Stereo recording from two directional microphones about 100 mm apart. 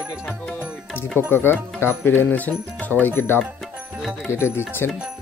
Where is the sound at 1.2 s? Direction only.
20° left (ahead or behind).